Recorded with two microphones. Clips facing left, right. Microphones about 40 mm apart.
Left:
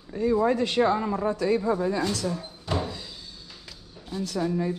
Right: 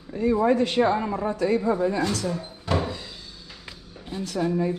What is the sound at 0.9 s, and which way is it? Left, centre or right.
Speech, right.